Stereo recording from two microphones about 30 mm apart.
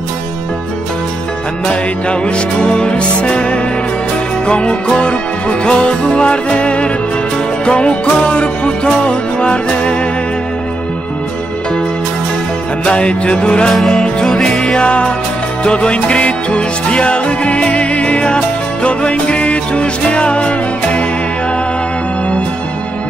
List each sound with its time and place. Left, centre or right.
1.7 s music: left
12.8 s music: left
13.9 s music: centre
14.8 s music: left
18.2 s music: left